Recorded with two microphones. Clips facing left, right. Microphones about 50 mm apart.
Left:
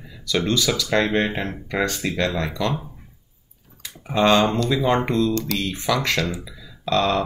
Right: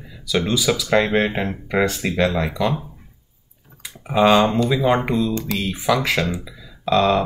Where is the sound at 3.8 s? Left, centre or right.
Centre.